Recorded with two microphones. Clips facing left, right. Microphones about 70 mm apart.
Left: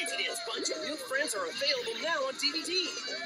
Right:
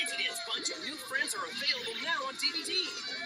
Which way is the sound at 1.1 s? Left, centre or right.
Right.